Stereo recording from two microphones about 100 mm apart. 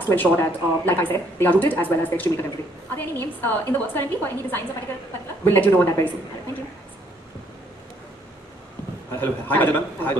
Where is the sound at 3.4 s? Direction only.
20° left (ahead or behind).